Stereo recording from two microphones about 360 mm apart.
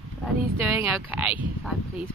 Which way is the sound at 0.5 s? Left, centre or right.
Centre.